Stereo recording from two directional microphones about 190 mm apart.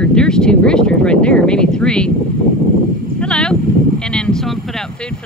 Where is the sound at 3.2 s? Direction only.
5° left (ahead or behind).